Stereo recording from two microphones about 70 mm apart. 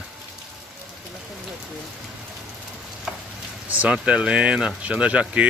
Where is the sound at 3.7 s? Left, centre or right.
Right.